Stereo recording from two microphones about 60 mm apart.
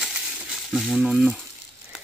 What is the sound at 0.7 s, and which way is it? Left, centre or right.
Speech, centre.